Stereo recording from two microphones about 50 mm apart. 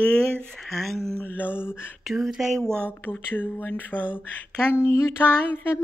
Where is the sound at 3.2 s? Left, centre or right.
Left.